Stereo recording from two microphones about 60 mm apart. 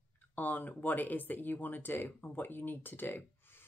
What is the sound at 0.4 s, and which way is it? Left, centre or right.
Speech, left.